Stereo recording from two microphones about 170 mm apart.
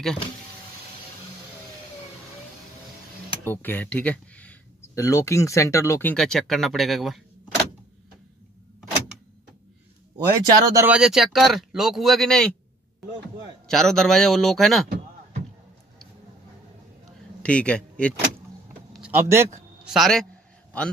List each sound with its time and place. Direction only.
3.4 s speech: 10° left (ahead or behind)
6.1 s speech: 5° left (ahead or behind)
10.1 s speech: 20° right (ahead or behind)
10.9 s speech: 5° right (ahead or behind)
13.7 s speech: 5° left (ahead or behind)
17.4 s speech: 5° left (ahead or behind)
18.9 s a sound: 10° right (ahead or behind)
19.9 s speech: centre (ahead or behind)